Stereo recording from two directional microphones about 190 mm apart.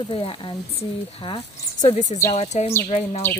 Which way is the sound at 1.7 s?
40° left (ahead or behind).